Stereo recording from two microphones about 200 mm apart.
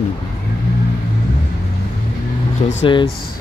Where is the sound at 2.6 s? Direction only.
30° left (ahead or behind).